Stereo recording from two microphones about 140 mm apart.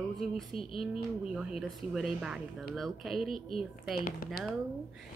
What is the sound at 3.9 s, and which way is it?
Speech, 90° left.